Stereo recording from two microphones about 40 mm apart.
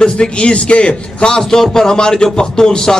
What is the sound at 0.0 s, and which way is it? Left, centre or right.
A man's voice, left.